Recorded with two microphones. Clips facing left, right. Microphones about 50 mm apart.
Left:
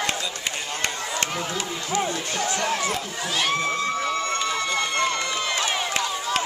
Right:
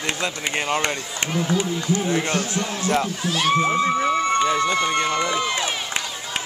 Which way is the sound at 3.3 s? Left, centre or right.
Centre.